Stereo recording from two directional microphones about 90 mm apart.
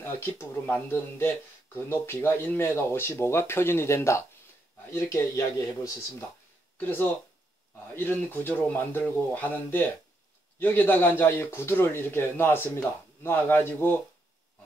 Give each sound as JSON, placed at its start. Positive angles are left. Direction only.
{"t": 0.0, "sound": "speech", "side_deg": 25}
{"t": 6.8, "sound": "speech", "side_deg": 20}